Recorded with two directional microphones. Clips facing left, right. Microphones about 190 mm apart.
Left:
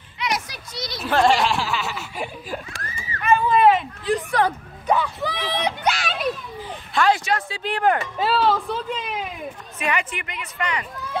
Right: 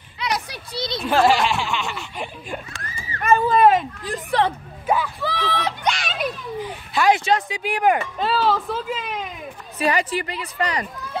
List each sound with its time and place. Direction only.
0.2 s children playing: 30° right (ahead or behind)
1.0 s speech: 5° right (ahead or behind)
3.0 s a sound: 40° right (ahead or behind)
4.8 s speech: 5° right (ahead or behind)
5.2 s speech: 20° left (ahead or behind)
5.9 s children playing: centre (ahead or behind)
7.1 s speech: 20° right (ahead or behind)
8.2 s speech: centre (ahead or behind)
9.8 s a woman's voice: 35° right (ahead or behind)